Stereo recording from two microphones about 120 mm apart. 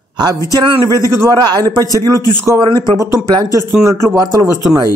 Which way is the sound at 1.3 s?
35° right (ahead or behind).